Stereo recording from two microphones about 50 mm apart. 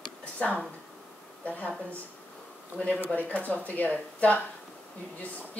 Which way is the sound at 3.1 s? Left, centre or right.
Left.